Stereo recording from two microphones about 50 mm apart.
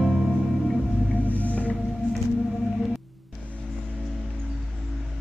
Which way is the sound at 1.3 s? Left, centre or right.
Left.